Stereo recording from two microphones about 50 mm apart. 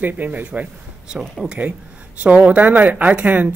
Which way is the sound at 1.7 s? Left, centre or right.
Right.